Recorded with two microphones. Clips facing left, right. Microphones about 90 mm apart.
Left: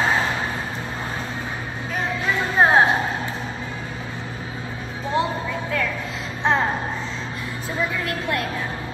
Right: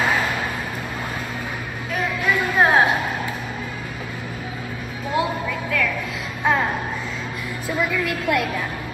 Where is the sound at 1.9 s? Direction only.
30° left (ahead or behind).